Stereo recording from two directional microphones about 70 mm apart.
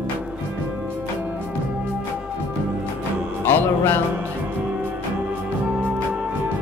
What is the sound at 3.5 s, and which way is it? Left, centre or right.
Music, left.